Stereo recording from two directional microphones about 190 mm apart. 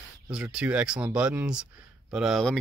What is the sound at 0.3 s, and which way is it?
Speech, 5° right (ahead or behind).